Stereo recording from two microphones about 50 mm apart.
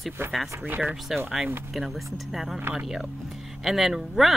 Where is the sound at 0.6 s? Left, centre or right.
Right.